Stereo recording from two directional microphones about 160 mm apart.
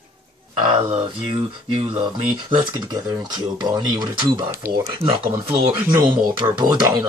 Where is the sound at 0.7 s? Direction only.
45° right (ahead or behind).